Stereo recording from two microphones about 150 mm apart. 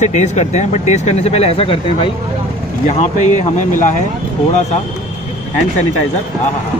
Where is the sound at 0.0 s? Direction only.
55° left (ahead or behind).